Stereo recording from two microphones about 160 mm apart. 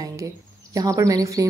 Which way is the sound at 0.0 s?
20° right (ahead or behind).